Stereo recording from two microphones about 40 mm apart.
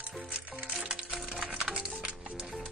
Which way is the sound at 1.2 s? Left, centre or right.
Centre.